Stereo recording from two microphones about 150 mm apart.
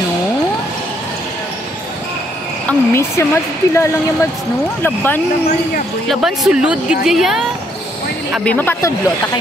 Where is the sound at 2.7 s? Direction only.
15° left (ahead or behind).